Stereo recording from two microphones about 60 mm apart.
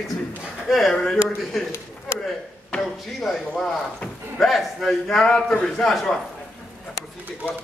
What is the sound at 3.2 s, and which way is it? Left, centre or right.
A man's voice, centre.